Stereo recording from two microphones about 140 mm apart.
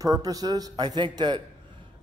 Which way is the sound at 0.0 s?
25° right (ahead or behind).